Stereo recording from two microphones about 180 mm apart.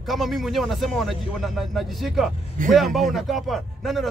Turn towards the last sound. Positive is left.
turn(degrees=0)  # may be behind; listen again after turning